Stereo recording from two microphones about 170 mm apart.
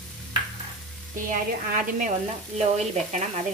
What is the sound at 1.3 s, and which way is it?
Sizzle, 50° right (ahead or behind).